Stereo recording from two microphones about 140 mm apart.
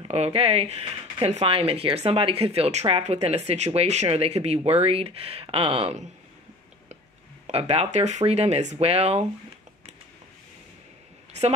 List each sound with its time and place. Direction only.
0.1 s speech: 45° right (ahead or behind)
7.4 s speech: 50° right (ahead or behind)